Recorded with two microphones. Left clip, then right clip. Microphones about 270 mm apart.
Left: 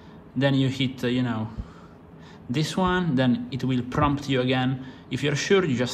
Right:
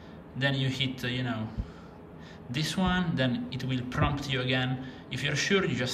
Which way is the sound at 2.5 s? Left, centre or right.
Centre.